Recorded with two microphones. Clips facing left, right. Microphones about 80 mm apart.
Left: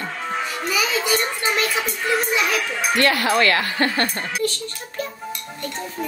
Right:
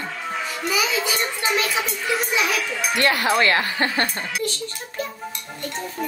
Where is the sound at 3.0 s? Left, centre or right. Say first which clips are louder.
Even; right.